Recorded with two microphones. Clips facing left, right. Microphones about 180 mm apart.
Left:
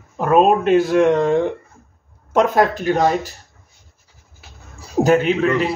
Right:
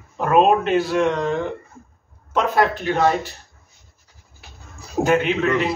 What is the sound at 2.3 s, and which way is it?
Speech, 45° left (ahead or behind).